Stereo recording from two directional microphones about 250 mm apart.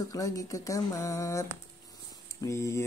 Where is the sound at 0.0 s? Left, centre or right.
Centre.